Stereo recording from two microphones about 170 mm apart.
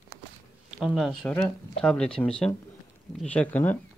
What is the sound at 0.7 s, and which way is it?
Speech, 5° right (ahead or behind).